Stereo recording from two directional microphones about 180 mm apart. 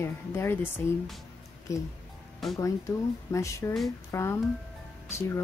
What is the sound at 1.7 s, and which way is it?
Speech, 20° left (ahead or behind).